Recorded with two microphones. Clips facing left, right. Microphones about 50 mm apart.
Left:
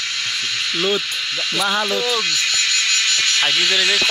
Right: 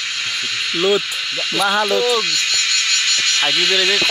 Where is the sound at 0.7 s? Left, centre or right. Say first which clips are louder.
Right 5 dB; centre.